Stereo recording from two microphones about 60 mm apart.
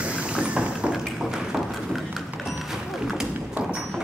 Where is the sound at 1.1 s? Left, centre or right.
Centre.